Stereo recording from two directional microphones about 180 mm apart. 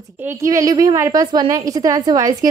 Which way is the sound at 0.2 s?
15° right (ahead or behind).